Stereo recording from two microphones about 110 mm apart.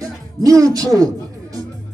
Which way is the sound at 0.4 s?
30° right (ahead or behind).